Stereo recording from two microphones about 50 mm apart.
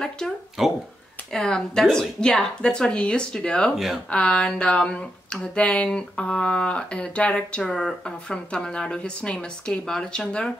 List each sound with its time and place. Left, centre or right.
0.6 s speech: centre
1.3 s speech: centre
3.7 s speech: centre
4.1 s speech: left
7.6 s speech: centre